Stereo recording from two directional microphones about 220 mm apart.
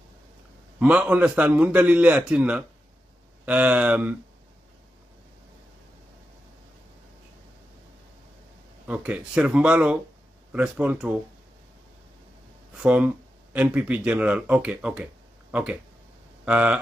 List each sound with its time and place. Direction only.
0.7 s a man's voice: 5° right (ahead or behind)
8.8 s speech: 5° right (ahead or behind)
12.7 s speech: 5° right (ahead or behind)